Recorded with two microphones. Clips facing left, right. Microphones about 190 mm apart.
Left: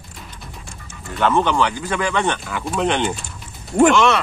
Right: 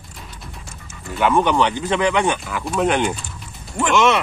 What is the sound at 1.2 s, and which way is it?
Speech, 10° right (ahead or behind).